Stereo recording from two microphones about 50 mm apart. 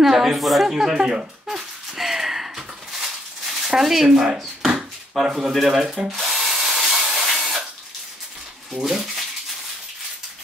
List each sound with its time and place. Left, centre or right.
0.0 s a sound: centre
5.3 s speech: centre
5.9 s drill: centre
8.7 s speech: centre